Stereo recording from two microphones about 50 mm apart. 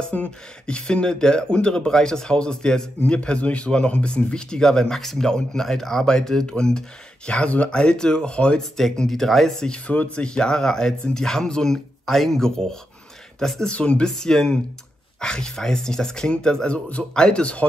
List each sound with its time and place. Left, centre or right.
0.1 s speech: left
8.5 s speech: centre
9.7 s speech: left
13.7 s speech: left